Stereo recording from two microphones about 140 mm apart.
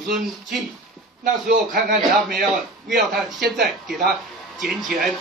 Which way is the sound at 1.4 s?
90° right.